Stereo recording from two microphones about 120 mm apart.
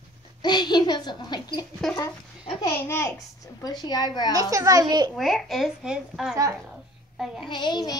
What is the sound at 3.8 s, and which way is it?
Speech, 35° left (ahead or behind).